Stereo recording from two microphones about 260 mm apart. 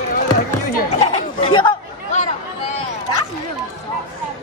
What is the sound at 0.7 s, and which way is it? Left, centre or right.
Speech, left.